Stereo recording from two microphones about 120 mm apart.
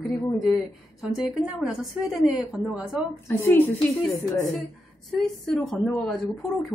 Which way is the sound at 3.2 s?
20° left (ahead or behind).